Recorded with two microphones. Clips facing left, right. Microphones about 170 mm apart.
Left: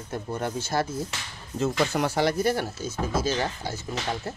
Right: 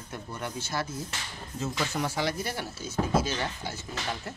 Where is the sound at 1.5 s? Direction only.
65° left (ahead or behind); by 3.8 s 40° left (ahead or behind).